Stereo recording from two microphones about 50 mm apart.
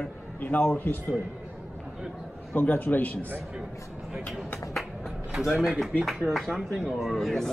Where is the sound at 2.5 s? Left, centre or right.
Left.